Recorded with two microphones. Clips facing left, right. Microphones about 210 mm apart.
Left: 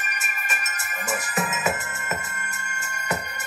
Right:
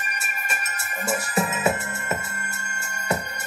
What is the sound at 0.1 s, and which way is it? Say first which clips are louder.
Music: right 1 dB; 30° right (ahead or behind).